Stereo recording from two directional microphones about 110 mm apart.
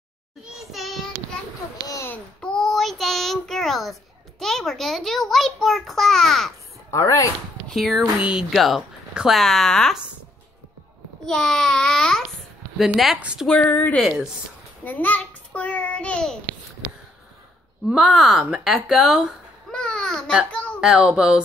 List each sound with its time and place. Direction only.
0.5 s child singing: 5° right (ahead or behind)
2.0 s child singing: 10° left (ahead or behind)
4.4 s a child's voice: 5° left (ahead or behind)
6.9 s speech: 30° left (ahead or behind)
7.6 s a child's voice: centre (ahead or behind)
11.2 s a child's voice: 5° left (ahead or behind)
13.5 s a woman's voice: 15° left (ahead or behind)
13.9 s a child's voice: 5° right (ahead or behind)
14.9 s a child's voice: 15° left (ahead or behind)
17.8 s a child's voice: centre (ahead or behind)
19.7 s babbling: 10° left (ahead or behind)
20.8 s a child's voice: 5° right (ahead or behind)